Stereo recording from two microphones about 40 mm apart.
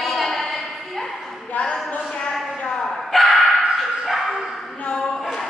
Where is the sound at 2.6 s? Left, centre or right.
Centre.